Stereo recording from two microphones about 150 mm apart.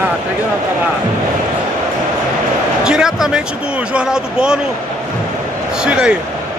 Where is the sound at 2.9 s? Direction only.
5° right (ahead or behind).